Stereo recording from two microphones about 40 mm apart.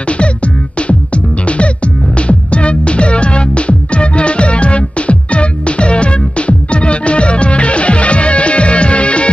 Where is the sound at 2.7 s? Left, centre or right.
Left.